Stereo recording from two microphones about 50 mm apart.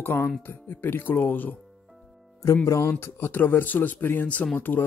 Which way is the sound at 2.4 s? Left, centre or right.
Left.